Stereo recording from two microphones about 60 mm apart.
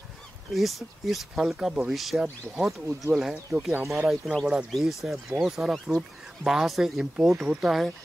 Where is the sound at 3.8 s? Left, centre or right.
Right.